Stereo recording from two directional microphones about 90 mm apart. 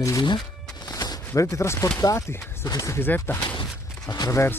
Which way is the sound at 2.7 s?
45° left (ahead or behind).